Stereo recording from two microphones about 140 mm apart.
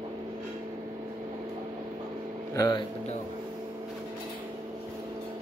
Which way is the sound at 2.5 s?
25° left (ahead or behind).